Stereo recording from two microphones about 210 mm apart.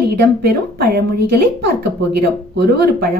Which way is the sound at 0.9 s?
50° right (ahead or behind).